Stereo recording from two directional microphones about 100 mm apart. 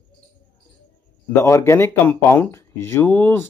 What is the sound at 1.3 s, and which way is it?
Speech, 30° left (ahead or behind).